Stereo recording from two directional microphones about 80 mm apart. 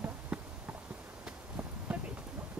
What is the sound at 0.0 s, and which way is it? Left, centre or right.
Clip-clop, centre.